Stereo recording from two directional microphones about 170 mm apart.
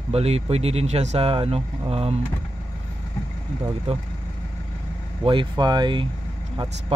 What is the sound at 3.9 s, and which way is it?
Speech, 35° right (ahead or behind).